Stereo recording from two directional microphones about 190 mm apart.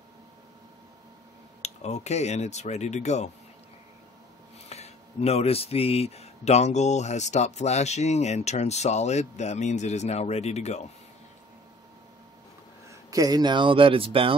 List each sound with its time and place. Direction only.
1.6 s speech: 35° left (ahead or behind)
4.6 s speech: 35° left (ahead or behind)
13.1 s speech: 20° right (ahead or behind)